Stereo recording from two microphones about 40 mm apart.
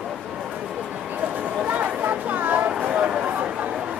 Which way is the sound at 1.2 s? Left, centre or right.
Right.